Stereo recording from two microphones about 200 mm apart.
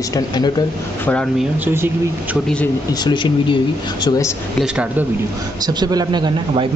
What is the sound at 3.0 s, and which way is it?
Speech, 25° left (ahead or behind).